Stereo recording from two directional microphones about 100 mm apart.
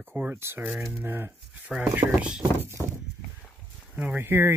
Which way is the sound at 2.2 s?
10° right (ahead or behind).